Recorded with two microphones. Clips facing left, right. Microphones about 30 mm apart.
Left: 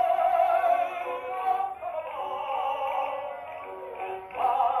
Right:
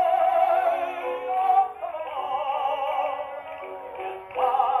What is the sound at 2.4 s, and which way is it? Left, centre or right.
Music, centre.